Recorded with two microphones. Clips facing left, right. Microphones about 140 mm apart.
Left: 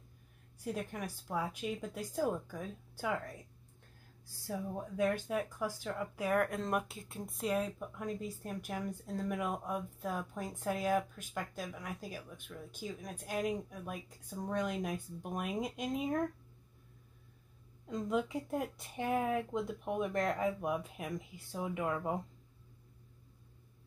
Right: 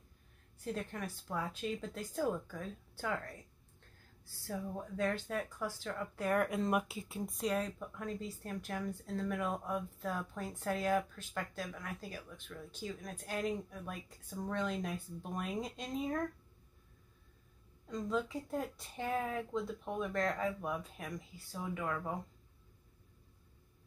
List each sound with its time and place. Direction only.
0.7 s speech: 10° left (ahead or behind)
4.4 s speech: 15° left (ahead or behind)
18.0 s speech: 15° left (ahead or behind)